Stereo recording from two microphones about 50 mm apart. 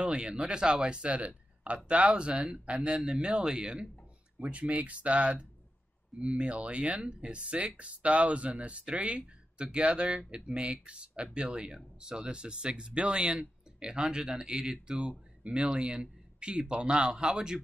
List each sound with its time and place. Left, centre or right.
0.0 s speech: right